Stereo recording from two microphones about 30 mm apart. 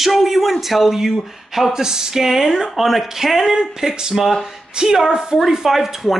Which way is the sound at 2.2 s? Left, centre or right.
Centre.